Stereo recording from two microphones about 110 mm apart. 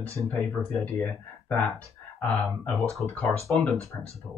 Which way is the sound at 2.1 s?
10° left (ahead or behind).